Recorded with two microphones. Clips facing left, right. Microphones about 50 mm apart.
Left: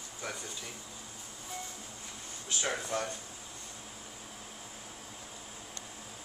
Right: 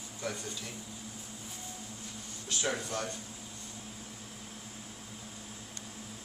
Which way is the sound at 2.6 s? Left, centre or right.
Centre.